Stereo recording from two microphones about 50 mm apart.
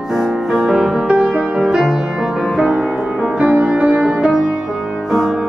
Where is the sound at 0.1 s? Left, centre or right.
Centre.